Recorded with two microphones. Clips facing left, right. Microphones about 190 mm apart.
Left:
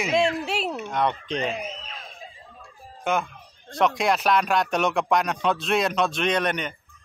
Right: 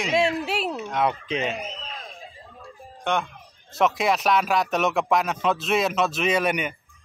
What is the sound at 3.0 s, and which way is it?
Speech, centre (ahead or behind).